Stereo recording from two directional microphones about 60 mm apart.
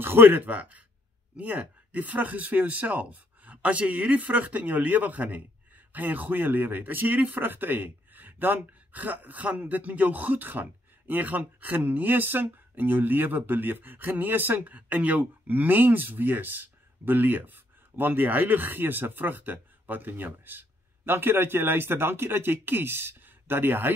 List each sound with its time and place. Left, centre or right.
0.0 s speech: right